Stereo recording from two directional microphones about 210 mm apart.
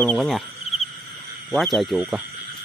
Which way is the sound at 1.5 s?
Centre (ahead or behind).